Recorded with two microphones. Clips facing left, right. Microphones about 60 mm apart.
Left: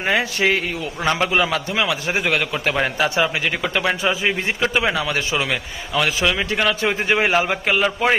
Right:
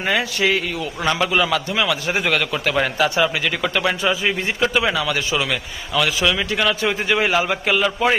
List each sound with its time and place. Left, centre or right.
0.0 s a man's voice: left
2.1 s a man's voice: centre; by 8.2 s left